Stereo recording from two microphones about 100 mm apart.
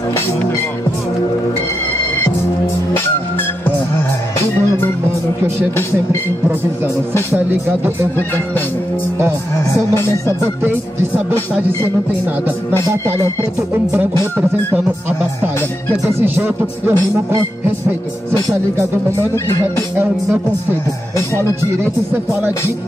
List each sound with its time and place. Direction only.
9.9 s music: 25° left (ahead or behind)
10.6 s speech: 20° right (ahead or behind)
12.8 s speech: 30° right (ahead or behind)
16.1 s speech: 25° right (ahead or behind)